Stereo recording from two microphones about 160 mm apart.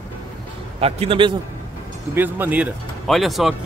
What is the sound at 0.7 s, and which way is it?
Speech, 40° right (ahead or behind).